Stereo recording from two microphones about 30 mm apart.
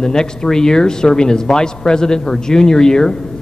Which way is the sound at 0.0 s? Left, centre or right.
Left.